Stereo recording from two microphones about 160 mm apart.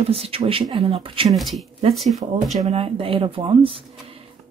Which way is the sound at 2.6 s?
35° right (ahead or behind).